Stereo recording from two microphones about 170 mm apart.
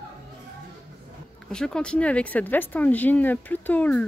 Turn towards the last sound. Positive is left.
turn(degrees=10)  # may be behind; listen again after turning